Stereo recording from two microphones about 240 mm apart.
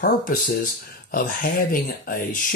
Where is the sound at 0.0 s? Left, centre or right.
Left.